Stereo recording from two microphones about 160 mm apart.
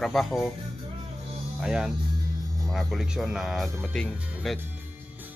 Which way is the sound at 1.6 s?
5° right (ahead or behind).